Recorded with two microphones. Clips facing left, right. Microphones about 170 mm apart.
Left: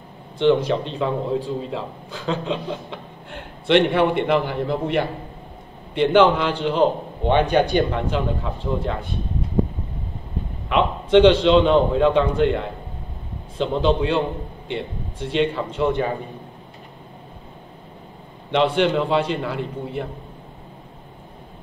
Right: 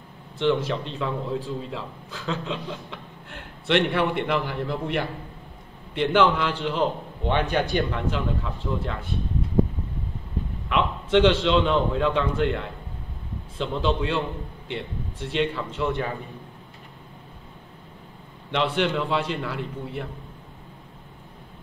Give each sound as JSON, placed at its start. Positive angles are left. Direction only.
{"t": 0.4, "sound": "a man's voice", "side_deg": 20}
{"t": 10.7, "sound": "a man's voice", "side_deg": 20}
{"t": 18.5, "sound": "a man's voice", "side_deg": 20}